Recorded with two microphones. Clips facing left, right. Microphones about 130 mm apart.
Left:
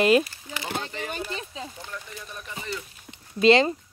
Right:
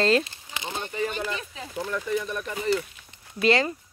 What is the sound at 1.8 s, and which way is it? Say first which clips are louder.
Speech: right 12 dB; 70° right (ahead or behind).